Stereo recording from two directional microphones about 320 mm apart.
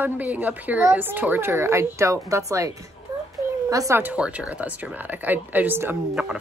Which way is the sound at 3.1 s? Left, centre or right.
Centre.